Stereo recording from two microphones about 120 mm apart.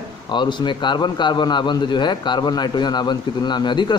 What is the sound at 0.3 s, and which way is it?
A man's voice, 40° left (ahead or behind).